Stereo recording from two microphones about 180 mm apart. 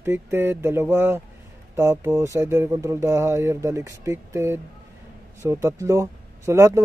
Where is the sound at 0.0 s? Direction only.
15° right (ahead or behind).